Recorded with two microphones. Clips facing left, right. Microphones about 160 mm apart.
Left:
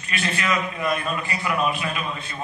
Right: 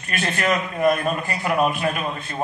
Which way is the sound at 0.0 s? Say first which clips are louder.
Right 3 dB; 45° right (ahead or behind).